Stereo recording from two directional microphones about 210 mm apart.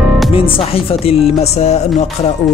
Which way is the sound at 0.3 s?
25° left (ahead or behind).